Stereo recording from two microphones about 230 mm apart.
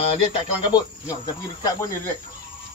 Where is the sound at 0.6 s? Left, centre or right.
Centre.